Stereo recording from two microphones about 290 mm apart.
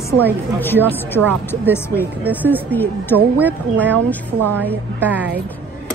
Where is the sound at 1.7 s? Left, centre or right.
Centre.